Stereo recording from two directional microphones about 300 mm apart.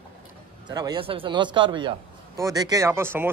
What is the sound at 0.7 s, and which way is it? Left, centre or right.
Speech, centre.